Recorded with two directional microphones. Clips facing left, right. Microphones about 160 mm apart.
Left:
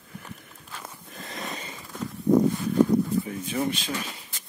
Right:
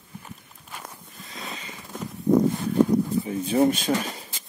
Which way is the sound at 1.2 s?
55° left (ahead or behind).